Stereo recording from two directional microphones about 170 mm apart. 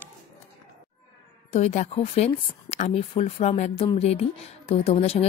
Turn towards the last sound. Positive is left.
turn(degrees=35)  # may be behind; listen again after turning